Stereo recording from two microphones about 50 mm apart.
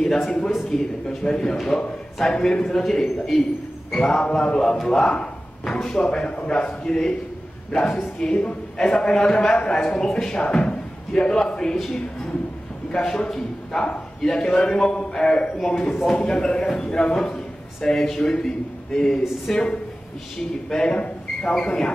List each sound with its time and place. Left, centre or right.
0.0 s a man's voice: centre
5.1 s a sound: centre
5.8 s a man's voice: centre
12.9 s a man's voice: centre
15.5 s a man's voice: centre
16.2 s a man's voice: centre